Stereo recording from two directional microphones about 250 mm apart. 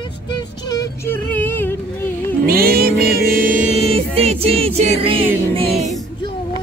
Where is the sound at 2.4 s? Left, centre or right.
Right.